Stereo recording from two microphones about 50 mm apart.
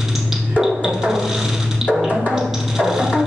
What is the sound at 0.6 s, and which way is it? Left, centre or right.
Synthesizer, centre.